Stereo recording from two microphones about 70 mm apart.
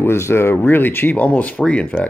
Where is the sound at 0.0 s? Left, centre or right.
Left.